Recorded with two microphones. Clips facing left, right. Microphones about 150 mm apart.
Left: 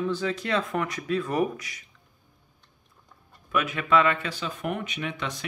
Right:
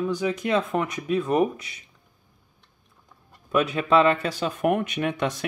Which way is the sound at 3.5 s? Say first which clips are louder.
Right 3 dB; 30° right (ahead or behind).